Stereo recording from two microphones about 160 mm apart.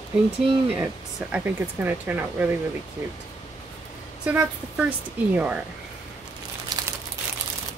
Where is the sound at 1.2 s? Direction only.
10° right (ahead or behind).